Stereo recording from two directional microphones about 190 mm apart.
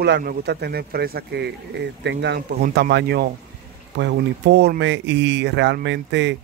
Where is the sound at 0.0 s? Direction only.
55° right (ahead or behind).